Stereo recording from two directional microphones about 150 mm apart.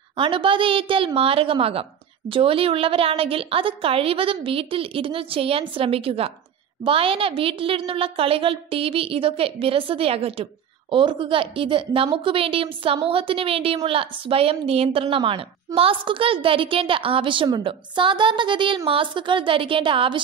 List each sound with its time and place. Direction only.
0.1 s a woman's voice: 35° right (ahead or behind)